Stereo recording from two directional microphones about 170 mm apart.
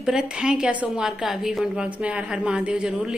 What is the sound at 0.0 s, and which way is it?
A woman's voice, 5° right (ahead or behind).